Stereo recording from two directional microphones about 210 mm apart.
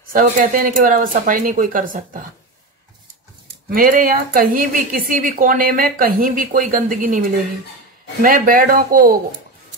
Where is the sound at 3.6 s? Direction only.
45° right (ahead or behind).